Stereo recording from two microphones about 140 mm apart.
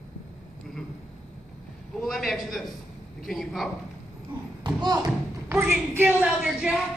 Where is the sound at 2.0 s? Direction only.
Centre (ahead or behind).